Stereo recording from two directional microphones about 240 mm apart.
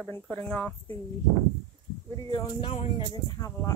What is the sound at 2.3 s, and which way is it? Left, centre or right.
Speech, centre.